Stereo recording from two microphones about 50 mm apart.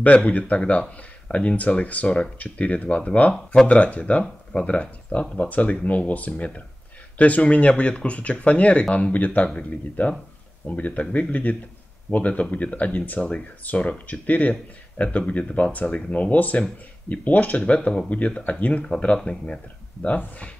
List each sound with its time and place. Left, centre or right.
0.3 s speech: left